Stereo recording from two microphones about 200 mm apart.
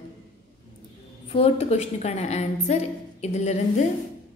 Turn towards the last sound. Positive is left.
turn(degrees=35)  # may be behind; listen again after turning